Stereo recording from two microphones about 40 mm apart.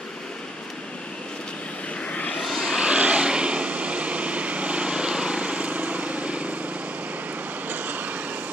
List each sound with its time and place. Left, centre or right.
2.0 s vehicle: left
2.4 s vehicle: centre
2.8 s vehicle: right
5.4 s vehicle: right
7.7 s vehicle: right